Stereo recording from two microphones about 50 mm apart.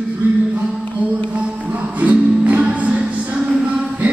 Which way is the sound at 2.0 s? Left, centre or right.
Right.